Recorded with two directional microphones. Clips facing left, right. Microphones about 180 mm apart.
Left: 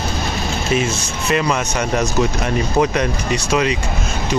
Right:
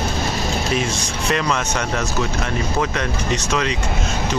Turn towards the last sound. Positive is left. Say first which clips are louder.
# left 3 dB
turn(degrees=10)  # may be behind; listen again after turning